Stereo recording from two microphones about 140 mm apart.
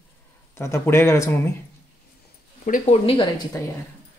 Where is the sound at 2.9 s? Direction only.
40° left (ahead or behind).